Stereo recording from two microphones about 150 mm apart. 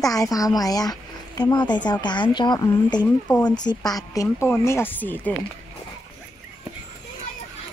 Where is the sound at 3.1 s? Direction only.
10° left (ahead or behind).